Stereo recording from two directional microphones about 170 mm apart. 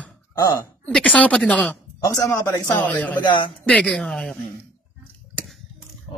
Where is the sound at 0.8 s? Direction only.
5° left (ahead or behind).